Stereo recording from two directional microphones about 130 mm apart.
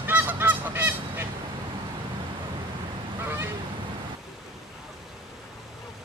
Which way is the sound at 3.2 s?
15° right (ahead or behind).